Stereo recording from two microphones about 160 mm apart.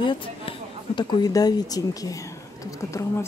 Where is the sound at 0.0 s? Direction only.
30° left (ahead or behind).